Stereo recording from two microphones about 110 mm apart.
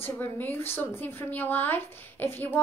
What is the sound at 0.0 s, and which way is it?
A woman's voice, 15° left (ahead or behind).